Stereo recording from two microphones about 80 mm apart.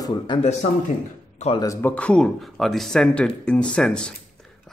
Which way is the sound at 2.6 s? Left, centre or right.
Centre.